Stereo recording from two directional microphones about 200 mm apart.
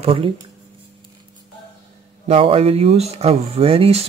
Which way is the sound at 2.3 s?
30° right (ahead or behind).